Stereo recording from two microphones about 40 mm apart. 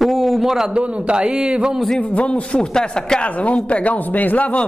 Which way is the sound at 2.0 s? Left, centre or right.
Left.